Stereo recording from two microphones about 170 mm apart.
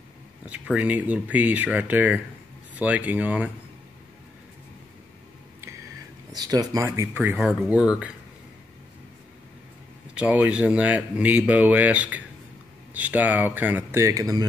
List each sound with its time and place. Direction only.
0.5 s speech: 5° right (ahead or behind)
5.6 s a sound: 20° right (ahead or behind)
7.3 s speech: 5° right (ahead or behind)
10.1 s speech: 5° right (ahead or behind)